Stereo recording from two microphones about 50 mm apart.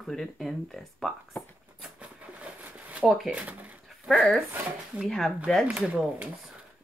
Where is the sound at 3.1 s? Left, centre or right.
Centre.